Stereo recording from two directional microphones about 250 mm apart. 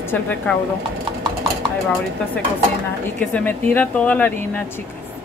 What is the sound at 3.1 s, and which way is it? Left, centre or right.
Speech, centre.